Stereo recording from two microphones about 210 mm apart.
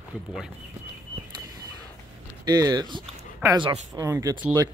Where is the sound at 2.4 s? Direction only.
15° right (ahead or behind).